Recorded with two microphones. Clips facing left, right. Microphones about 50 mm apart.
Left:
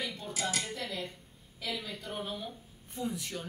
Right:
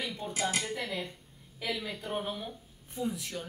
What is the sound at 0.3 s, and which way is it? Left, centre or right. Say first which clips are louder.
Speech: right 3 dB; right.